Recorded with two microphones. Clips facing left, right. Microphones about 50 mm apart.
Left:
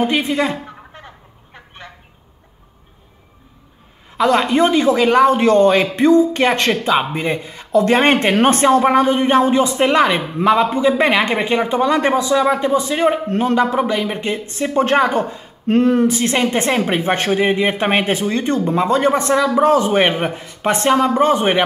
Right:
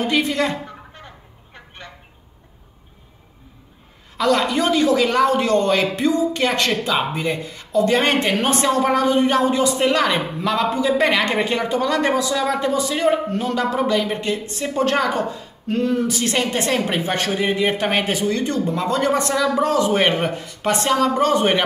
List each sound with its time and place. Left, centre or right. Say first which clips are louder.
0.0 s speech: left 2 dB; centre
1.0 s a sound: left 2 dB; centre
4.2 s speech: left 4 dB; left
7.7 s speech: left 4 dB; left
8.0 s speech: left 5 dB; left
13.3 s speech: left 6 dB; left
13.6 s speech: left 3 dB; left
16.1 s speech: left 4 dB; left